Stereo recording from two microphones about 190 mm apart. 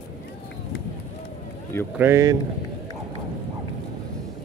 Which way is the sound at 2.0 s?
15° right (ahead or behind).